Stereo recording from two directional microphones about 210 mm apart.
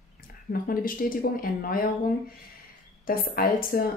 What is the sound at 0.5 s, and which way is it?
Speech, 45° left (ahead or behind).